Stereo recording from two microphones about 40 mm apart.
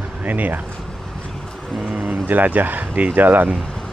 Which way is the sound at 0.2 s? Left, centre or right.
Right.